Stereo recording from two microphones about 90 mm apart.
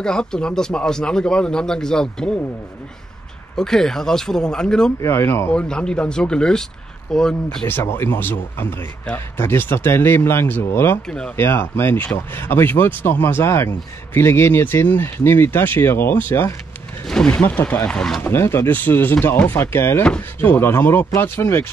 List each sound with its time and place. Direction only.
0.0 s speech: 10° left (ahead or behind)
3.5 s speech: 5° left (ahead or behind)
5.0 s a man's voice: 30° left (ahead or behind)
5.5 s speech: 10° left (ahead or behind)
7.6 s a man's voice: 25° left (ahead or behind)
11.1 s speech: 10° left (ahead or behind)
11.3 s a man's voice: 25° left (ahead or behind); by 18.2 s 5° left (ahead or behind)
18.2 s a man's voice: 25° left (ahead or behind)